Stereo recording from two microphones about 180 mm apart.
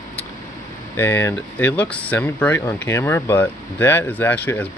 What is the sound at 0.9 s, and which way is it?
Speech, 10° left (ahead or behind).